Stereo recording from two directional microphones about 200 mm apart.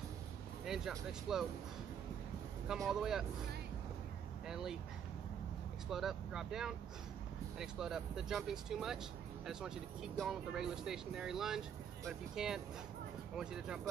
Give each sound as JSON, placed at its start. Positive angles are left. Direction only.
{"t": 0.7, "sound": "speech", "side_deg": 0}
{"t": 2.7, "sound": "speech", "side_deg": 0}
{"t": 4.5, "sound": "speech", "side_deg": 0}
{"t": 5.9, "sound": "speech", "side_deg": 0}